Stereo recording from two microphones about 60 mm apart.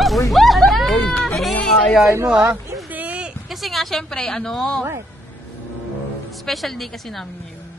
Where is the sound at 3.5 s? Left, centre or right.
Centre.